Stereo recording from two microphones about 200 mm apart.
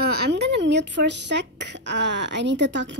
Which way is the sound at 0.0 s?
50° right (ahead or behind).